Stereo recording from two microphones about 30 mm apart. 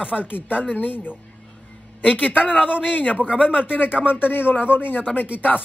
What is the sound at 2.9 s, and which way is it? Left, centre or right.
Speech, left.